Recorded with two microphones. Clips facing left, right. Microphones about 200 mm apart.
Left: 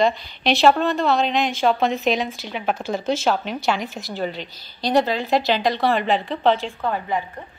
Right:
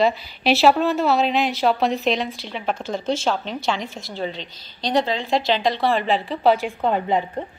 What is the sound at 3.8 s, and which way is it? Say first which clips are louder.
Speech: left 2 dB; 25° right (ahead or behind).